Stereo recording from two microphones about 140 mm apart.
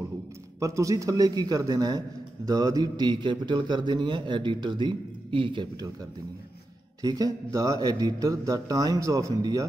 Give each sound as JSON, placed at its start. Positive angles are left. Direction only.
{"t": 0.6, "sound": "a man's voice", "side_deg": -25}
{"t": 7.0, "sound": "speech", "side_deg": -25}